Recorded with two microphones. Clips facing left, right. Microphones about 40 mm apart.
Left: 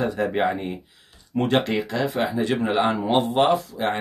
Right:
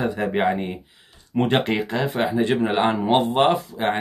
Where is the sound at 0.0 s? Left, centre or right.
Centre.